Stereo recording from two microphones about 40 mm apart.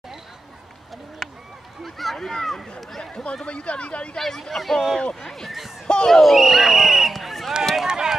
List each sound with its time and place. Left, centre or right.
1.2 s a sound: centre
1.8 s speech: centre
3.4 s speech: left
4.2 s speech: centre
5.9 s speech: centre
6.3 s speech: centre
7.8 s run: centre